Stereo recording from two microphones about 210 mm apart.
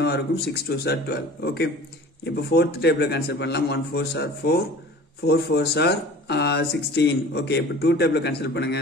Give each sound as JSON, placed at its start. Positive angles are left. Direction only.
{"t": 0.0, "sound": "speech", "side_deg": 50}